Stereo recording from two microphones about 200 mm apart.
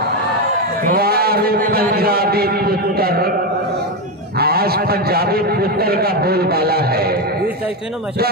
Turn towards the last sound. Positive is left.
turn(degrees=-50)  # may be behind; listen again after turning